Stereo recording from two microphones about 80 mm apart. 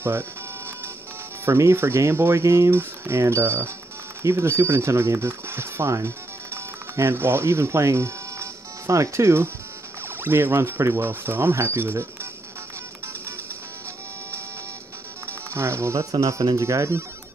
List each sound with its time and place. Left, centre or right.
1.4 s speech: right
15.5 s speech: right